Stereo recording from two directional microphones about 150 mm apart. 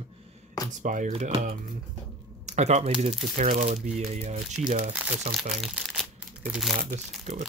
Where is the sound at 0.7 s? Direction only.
60° right (ahead or behind).